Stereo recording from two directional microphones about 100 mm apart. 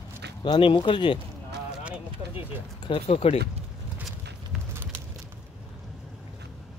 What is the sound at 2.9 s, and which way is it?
Speech, 85° left.